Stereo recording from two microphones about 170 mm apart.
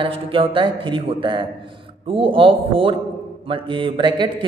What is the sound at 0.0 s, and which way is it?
A man's voice, 30° right (ahead or behind).